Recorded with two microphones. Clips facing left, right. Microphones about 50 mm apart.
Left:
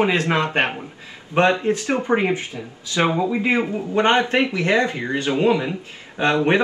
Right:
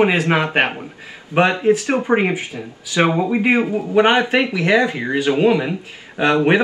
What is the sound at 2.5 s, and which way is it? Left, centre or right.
Speech, right.